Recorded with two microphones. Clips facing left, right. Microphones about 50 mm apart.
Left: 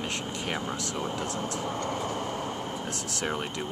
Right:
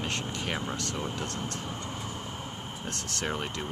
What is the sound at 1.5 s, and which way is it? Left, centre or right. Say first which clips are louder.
Vehicle: left 6 dB; left.